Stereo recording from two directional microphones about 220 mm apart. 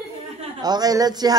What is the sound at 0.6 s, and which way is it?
Speech, 15° right (ahead or behind).